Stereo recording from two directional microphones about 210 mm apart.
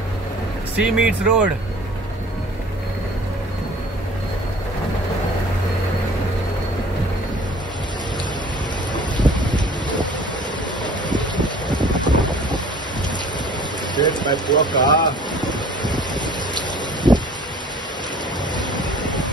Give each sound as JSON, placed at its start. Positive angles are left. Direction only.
{"t": 0.7, "sound": "speech", "side_deg": -5}
{"t": 8.9, "sound": "boat", "side_deg": -20}
{"t": 11.8, "sound": "boat", "side_deg": -20}
{"t": 13.9, "sound": "speech", "side_deg": 20}
{"t": 16.5, "sound": "boat", "side_deg": -20}